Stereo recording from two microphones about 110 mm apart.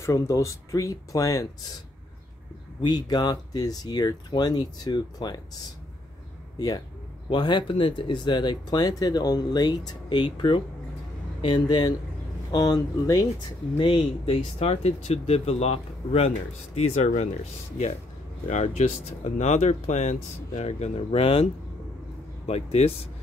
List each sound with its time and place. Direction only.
0.0 s speech: 30° left (ahead or behind)
2.8 s speech: 40° left (ahead or behind)
7.2 s speech: 45° left (ahead or behind)
13.7 s speech: 50° left (ahead or behind); by 16.3 s 70° left (ahead or behind)
16.7 s speech: 90° left
18.5 s speech: 90° left; by 21.5 s 60° left (ahead or behind)
22.5 s speech: 70° left (ahead or behind)